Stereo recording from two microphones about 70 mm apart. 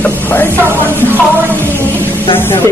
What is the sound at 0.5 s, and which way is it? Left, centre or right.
Speech, right.